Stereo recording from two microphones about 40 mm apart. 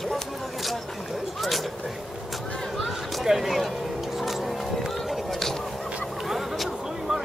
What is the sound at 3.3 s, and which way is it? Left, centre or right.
Speech, centre.